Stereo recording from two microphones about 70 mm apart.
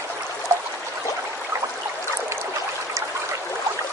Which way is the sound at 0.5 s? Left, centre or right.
Right.